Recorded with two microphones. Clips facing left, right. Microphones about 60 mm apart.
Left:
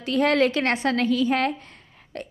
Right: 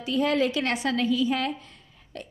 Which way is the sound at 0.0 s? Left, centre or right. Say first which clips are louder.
Left 4 dB; left.